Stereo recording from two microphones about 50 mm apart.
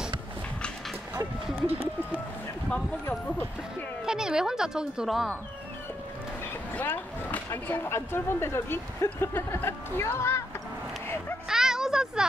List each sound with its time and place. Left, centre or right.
2.7 s speech: left
4.0 s speech: centre
5.0 s speech: centre
6.9 s speech: left
7.9 s speech: left
11.4 s a sound: centre